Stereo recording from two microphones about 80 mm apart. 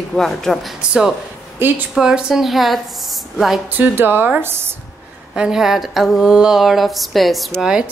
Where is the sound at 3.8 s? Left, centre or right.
Right.